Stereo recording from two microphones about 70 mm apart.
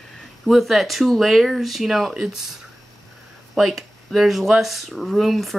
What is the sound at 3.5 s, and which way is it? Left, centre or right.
Speech, centre.